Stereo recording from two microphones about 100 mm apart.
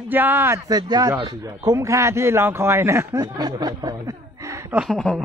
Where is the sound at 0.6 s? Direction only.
45° right (ahead or behind); by 3.1 s 25° right (ahead or behind).